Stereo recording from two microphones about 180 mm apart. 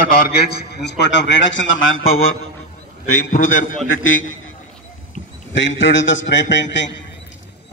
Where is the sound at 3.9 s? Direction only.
90° left.